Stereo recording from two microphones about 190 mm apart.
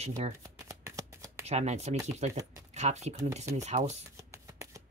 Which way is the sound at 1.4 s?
35° right (ahead or behind).